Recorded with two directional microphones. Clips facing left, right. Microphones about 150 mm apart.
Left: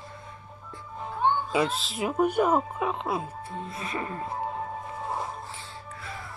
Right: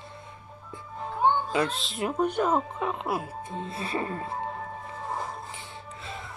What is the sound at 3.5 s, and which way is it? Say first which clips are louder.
Speech: right 3 dB; 25° right (ahead or behind).